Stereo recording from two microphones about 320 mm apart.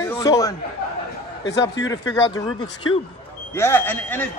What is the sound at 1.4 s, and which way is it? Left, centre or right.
Speech, left.